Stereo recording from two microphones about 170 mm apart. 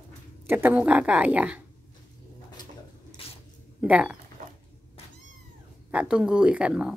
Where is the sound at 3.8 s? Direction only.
5° right (ahead or behind).